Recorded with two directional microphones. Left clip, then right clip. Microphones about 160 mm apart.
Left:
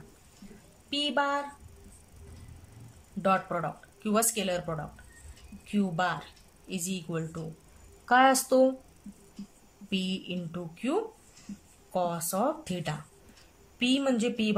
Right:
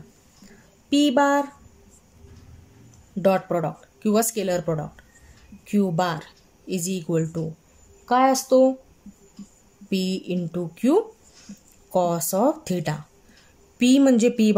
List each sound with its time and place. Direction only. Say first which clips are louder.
0.8 s speech: right 9 dB; 40° right (ahead or behind)
3.2 s speech: right 7 dB; 35° right (ahead or behind)
8.0 s a woman's voice: right 3 dB; 20° right (ahead or behind)
9.8 s speech: right 7 dB; 35° right (ahead or behind)